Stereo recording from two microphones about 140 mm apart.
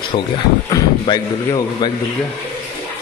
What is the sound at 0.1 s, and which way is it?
Speech, 50° left (ahead or behind).